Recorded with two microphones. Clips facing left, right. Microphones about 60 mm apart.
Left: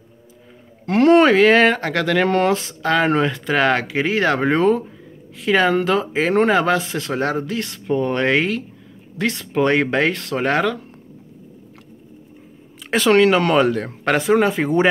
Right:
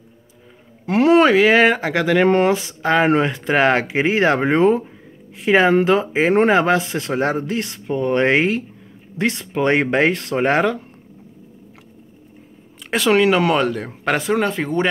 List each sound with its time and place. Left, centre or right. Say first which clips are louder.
0.8 s speech: left 1 dB; centre
2.2 s speech: right 3 dB; right
2.5 s speech: right 1 dB; centre
3.1 s speech: right 1 dB; right
7.8 s speech: left 3 dB; centre
8.1 s speech: right 5 dB; right
12.9 s speech: left 1 dB; centre